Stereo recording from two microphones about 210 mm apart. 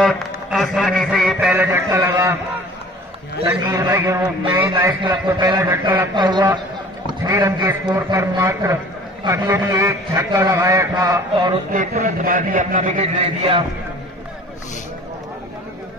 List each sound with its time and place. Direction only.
0.0 s a man's voice: centre (ahead or behind)
1.7 s a man's voice: 15° right (ahead or behind)
3.4 s a man's voice: 15° right (ahead or behind)
11.7 s a man's voice: 35° right (ahead or behind)